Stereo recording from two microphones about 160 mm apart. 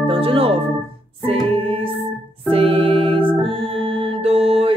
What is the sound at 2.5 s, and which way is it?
Organ, 35° right (ahead or behind).